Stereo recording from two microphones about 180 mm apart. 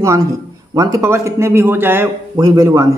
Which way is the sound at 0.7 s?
15° right (ahead or behind).